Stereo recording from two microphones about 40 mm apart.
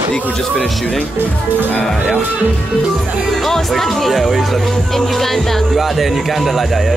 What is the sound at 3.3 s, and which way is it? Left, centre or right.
Speech, centre.